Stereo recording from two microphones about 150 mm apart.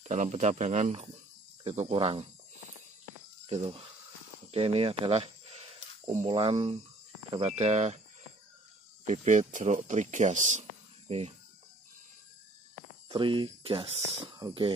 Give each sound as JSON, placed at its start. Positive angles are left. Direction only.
{"t": 0.0, "sound": "speech", "side_deg": -50}
{"t": 3.4, "sound": "speech", "side_deg": -45}
{"t": 9.0, "sound": "speech", "side_deg": -50}
{"t": 11.1, "sound": "speech", "side_deg": -45}
{"t": 13.1, "sound": "speech", "side_deg": -35}